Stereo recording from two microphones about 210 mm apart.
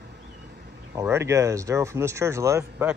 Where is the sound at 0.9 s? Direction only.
10° right (ahead or behind).